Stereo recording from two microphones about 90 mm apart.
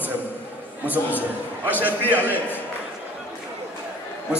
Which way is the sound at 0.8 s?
20° left (ahead or behind).